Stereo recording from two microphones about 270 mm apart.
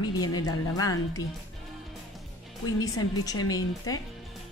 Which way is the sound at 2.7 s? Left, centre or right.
Centre.